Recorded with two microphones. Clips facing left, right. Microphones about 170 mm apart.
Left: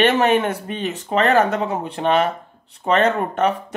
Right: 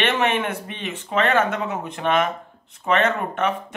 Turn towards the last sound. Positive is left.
turn(degrees=35)  # may be behind; listen again after turning